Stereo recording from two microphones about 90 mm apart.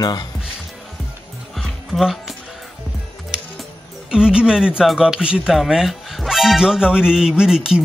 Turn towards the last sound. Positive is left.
turn(degrees=-10)  # may be behind; listen again after turning